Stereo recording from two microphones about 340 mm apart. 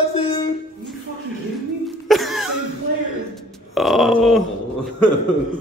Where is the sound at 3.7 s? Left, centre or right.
Centre.